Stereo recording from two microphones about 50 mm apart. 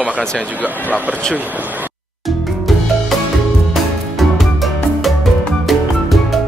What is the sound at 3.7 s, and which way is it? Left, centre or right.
Music, centre.